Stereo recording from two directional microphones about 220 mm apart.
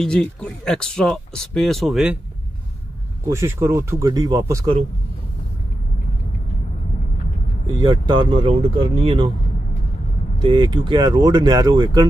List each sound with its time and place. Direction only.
0.0 s speech: 5° left (ahead or behind)
3.3 s speech: 10° right (ahead or behind)
7.6 s speech: 20° right (ahead or behind)
10.4 s speech: 20° right (ahead or behind)